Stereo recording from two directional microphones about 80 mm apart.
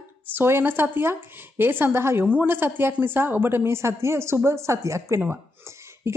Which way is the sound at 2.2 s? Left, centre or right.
Centre.